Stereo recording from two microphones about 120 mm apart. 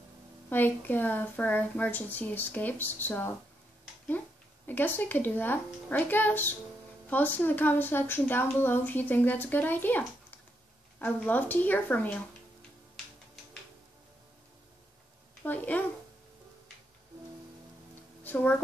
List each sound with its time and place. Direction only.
0.5 s a woman's voice: 15° left (ahead or behind)
4.6 s a woman's voice: 15° left (ahead or behind)
15.4 s a woman's voice: 15° left (ahead or behind)
18.2 s speech: 15° left (ahead or behind)